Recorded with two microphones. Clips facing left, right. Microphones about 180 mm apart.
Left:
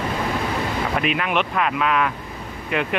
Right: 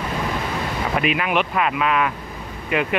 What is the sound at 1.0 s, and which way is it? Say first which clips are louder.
Speech: right 3 dB; 5° right (ahead or behind).